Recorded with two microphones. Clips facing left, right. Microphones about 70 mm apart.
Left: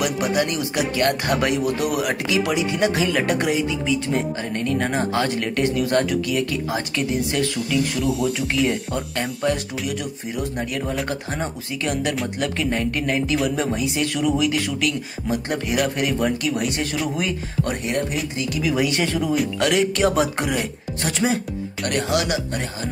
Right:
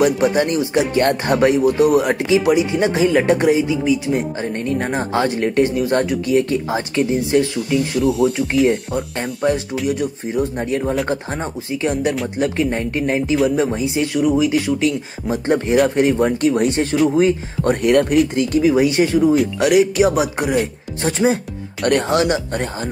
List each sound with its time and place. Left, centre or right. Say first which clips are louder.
0.0 s speech: right 6 dB; right
8.0 s speech: right 6 dB; centre
9.8 s speech: right 9 dB; right
17.8 s speech: right 10 dB; right
18.3 s speech: right 9 dB; right
18.6 s speech: right 7 dB; right
21.0 s speech: right 5 dB; right
21.8 s speech: right 7 dB; right